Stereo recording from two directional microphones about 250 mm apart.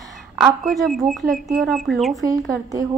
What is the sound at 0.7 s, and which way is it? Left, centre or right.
A woman's voice, centre.